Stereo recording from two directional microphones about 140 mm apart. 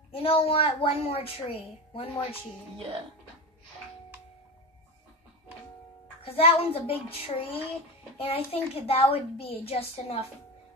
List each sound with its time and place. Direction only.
0.1 s a woman's voice: 40° left (ahead or behind)
6.2 s a woman's voice: 45° left (ahead or behind)